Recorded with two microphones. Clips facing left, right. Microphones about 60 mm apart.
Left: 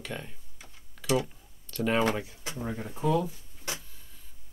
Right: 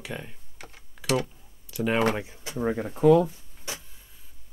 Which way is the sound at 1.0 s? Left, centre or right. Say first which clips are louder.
Right 1 dB; right.